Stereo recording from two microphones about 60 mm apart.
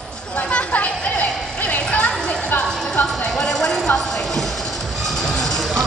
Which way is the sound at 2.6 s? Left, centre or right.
Centre.